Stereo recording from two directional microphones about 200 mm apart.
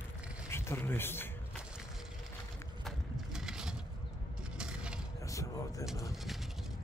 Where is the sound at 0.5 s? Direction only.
10° left (ahead or behind).